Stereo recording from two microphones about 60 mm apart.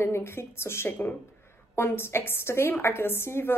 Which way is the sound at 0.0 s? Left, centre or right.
Left.